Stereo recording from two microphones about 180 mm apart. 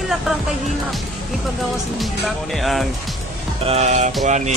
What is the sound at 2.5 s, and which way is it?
Speech, centre (ahead or behind).